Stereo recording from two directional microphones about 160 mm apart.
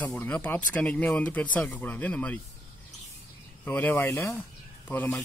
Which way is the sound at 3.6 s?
10° left (ahead or behind).